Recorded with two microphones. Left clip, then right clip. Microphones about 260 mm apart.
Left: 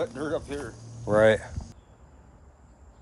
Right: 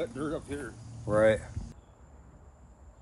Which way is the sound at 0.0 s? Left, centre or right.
Left.